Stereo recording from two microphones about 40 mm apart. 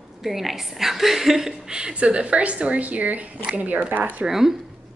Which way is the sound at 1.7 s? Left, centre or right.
Right.